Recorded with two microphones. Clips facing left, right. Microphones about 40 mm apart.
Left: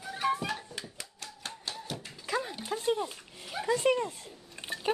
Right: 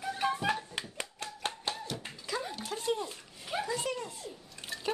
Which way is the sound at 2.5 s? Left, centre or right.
Left.